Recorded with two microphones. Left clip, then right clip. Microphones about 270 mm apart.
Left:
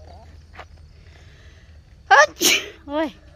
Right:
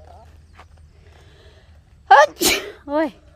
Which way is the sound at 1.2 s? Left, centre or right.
Centre.